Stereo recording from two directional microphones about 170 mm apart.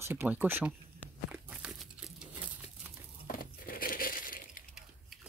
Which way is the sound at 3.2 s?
55° left (ahead or behind).